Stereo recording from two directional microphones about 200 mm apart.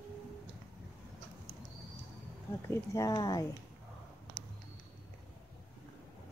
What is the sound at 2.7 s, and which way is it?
Speech, 15° left (ahead or behind).